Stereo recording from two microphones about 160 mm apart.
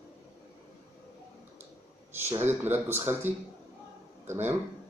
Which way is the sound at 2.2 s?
15° right (ahead or behind).